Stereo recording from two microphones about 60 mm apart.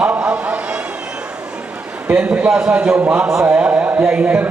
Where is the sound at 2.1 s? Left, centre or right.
Right.